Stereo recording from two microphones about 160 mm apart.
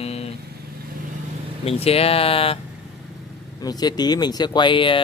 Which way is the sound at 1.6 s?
35° left (ahead or behind).